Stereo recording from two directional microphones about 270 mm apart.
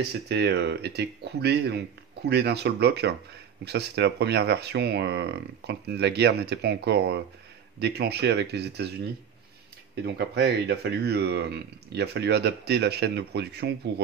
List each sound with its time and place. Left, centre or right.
0.3 s speech: right
10.0 s speech: right